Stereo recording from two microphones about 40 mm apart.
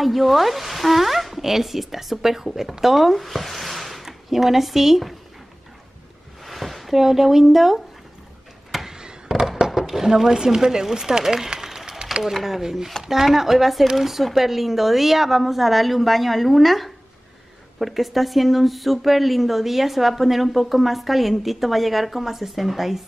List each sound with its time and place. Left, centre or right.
0.0 s speech: centre
6.4 s speech: centre
8.8 s a sound: centre
9.7 s speech: centre